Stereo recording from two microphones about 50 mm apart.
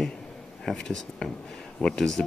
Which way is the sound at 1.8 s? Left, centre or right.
Centre.